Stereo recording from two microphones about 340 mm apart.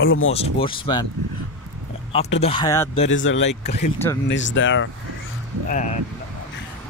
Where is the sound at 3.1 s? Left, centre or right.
Left.